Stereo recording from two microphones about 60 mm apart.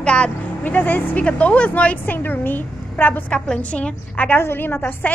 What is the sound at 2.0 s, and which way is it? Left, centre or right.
A woman's voice, left.